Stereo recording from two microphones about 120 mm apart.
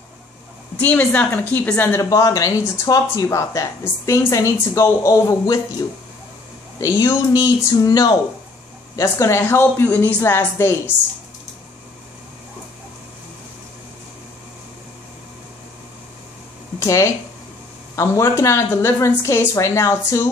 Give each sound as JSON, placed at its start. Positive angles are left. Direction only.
{"t": 0.7, "sound": "a woman's voice", "side_deg": 15}
{"t": 2.0, "sound": "a woman's voice", "side_deg": 25}
{"t": 6.8, "sound": "a woman's voice", "side_deg": 25}
{"t": 16.8, "sound": "a woman's voice", "side_deg": 25}